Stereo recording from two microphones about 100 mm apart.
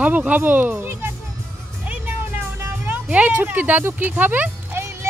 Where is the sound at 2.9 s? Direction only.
15° right (ahead or behind).